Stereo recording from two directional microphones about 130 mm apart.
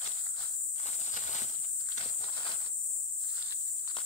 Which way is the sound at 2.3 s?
35° left (ahead or behind).